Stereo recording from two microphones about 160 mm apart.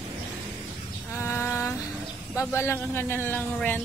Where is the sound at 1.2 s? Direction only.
15° left (ahead or behind).